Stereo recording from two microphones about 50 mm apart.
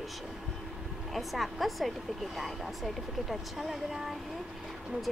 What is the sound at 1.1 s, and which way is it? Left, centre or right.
Speech, centre.